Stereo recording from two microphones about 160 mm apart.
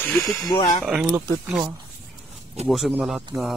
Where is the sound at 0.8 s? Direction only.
5° right (ahead or behind).